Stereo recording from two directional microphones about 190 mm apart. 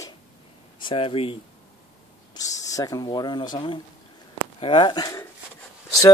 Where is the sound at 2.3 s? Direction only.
20° left (ahead or behind).